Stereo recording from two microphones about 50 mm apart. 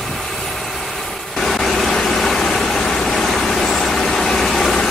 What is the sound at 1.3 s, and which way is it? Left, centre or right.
Vehicle, centre.